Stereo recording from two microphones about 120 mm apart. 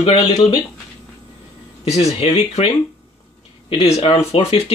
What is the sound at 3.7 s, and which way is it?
Speech, 55° left (ahead or behind).